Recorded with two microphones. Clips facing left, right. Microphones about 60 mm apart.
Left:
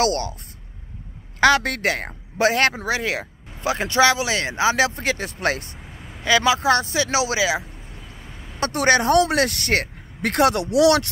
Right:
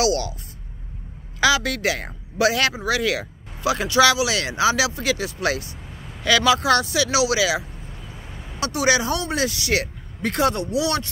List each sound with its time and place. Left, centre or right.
0.0 s speech: left
1.4 s speech: left
6.2 s speech: left
8.5 s speech: left
10.2 s speech: left